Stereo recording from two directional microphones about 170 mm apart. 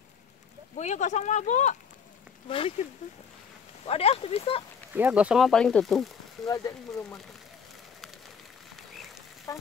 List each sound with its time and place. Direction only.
0.7 s speech: 45° left (ahead or behind)
2.8 s speech: 45° left (ahead or behind)
4.9 s speech: 10° right (ahead or behind)
6.4 s speech: 20° left (ahead or behind)
8.7 s a sound: centre (ahead or behind)
9.5 s speech: 20° left (ahead or behind)